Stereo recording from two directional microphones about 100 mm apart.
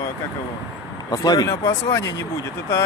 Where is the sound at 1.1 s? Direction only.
40° left (ahead or behind).